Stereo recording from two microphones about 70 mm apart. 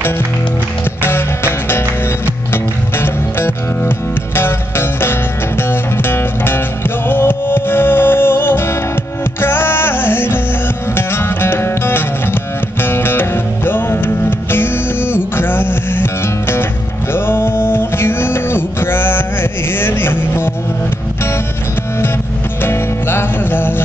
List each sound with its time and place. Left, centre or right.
1.0 s music: left
19.7 s a sound: left
22.6 s music: left